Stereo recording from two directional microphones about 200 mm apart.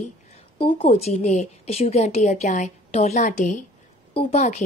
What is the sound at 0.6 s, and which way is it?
A woman's voice, 30° left (ahead or behind).